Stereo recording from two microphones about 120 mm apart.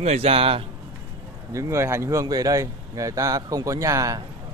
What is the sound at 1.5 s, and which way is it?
Speech, 20° right (ahead or behind).